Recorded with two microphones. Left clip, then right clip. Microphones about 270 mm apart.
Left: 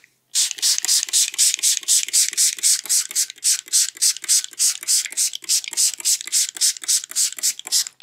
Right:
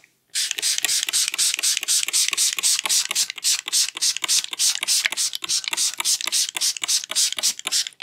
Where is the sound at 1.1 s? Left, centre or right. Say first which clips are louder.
Left 2 dB; centre.